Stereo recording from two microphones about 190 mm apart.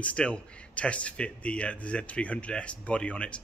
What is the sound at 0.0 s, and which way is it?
Speech, 5° left (ahead or behind).